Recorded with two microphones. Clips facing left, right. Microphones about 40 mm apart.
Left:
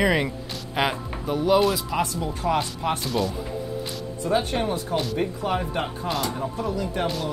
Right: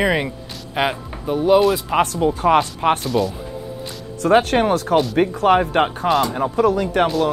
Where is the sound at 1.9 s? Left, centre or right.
Right.